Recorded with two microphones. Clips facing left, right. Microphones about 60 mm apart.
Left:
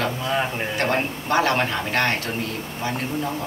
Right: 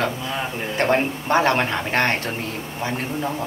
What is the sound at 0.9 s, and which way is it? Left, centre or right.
Speech, right.